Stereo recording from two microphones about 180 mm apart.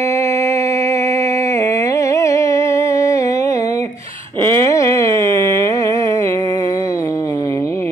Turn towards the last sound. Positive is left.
turn(degrees=15)  # may be behind; listen again after turning